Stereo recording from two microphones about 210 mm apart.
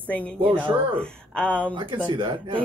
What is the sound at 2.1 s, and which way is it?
Speech, 25° right (ahead or behind).